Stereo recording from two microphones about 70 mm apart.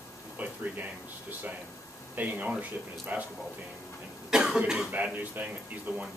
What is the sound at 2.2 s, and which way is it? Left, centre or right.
Speech, right.